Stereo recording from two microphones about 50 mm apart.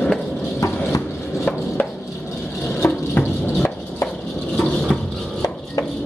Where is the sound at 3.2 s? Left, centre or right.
Left.